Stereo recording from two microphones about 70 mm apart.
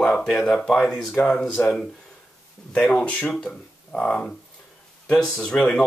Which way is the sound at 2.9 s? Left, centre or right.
Centre.